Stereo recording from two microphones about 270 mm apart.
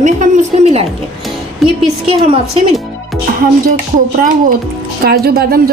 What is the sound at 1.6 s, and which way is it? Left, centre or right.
Speech, centre.